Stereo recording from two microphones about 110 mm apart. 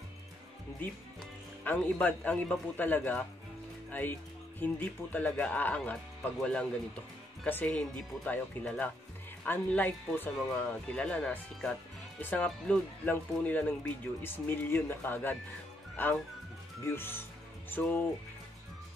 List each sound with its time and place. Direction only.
1.6 s speech: 15° left (ahead or behind)
10.3 s speech: 5° left (ahead or behind)